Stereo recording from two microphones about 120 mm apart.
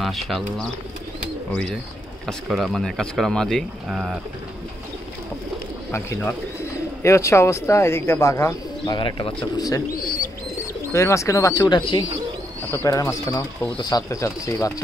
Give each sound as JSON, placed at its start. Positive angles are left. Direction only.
{"t": 0.0, "sound": "speech", "side_deg": 0}
{"t": 5.9, "sound": "speech", "side_deg": 20}
{"t": 8.9, "sound": "speech", "side_deg": 45}
{"t": 9.6, "sound": "speech", "side_deg": 30}
{"t": 11.7, "sound": "speech", "side_deg": 45}
{"t": 12.7, "sound": "speech", "side_deg": 25}